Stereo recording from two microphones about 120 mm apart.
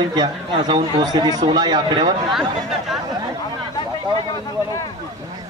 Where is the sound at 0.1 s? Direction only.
35° right (ahead or behind).